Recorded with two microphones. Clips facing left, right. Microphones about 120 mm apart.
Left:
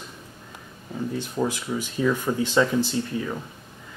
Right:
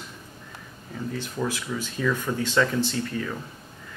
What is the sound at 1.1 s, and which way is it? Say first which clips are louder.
Speech: left 3 dB; 15° left (ahead or behind).